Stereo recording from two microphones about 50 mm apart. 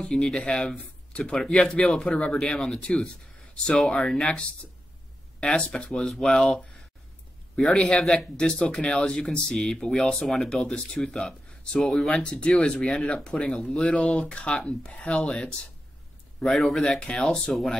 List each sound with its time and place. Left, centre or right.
0.0 s speech: centre
7.5 s speech: centre
12.2 s speech: left
14.2 s speech: left